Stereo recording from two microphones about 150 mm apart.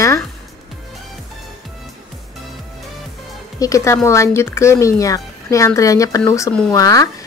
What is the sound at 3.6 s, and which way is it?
Speech, 20° left (ahead or behind).